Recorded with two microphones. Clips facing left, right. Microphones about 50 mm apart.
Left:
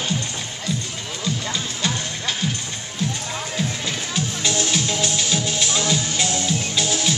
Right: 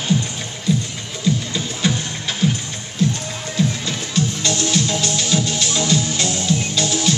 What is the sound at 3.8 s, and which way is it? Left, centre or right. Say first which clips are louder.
Music: right 3 dB; centre.